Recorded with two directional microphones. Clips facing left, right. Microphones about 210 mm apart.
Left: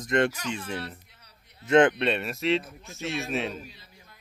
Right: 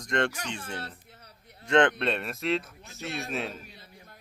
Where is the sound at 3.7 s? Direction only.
55° right (ahead or behind).